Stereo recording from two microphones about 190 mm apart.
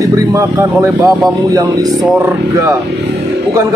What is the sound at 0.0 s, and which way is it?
Speech, 15° right (ahead or behind).